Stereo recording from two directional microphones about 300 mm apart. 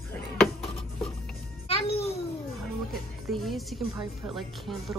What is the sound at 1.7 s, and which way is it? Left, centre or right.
Speech, centre.